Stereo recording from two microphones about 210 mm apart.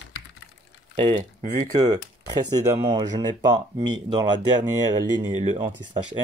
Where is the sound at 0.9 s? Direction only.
20° right (ahead or behind).